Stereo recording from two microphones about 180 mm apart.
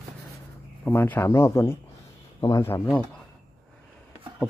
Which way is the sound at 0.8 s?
10° left (ahead or behind).